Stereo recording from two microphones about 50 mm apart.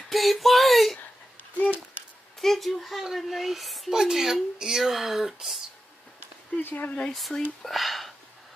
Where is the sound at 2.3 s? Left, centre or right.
Centre.